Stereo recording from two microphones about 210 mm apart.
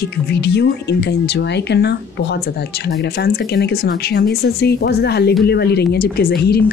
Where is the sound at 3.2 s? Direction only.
50° left (ahead or behind).